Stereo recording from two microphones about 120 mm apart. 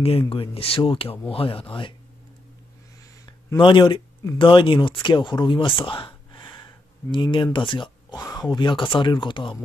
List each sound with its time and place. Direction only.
0.3 s speech: 50° left (ahead or behind)
3.5 s speech: 40° left (ahead or behind)